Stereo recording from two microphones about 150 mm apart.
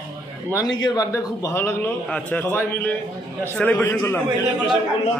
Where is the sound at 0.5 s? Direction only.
30° left (ahead or behind).